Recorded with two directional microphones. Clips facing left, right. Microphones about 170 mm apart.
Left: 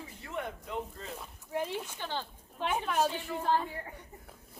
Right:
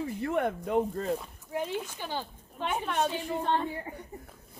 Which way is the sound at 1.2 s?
Centre (ahead or behind).